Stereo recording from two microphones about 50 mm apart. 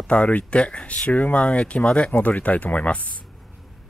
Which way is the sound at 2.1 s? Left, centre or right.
Left.